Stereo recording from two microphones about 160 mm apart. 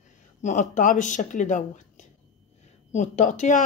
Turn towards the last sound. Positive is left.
turn(degrees=50)  # may be behind; listen again after turning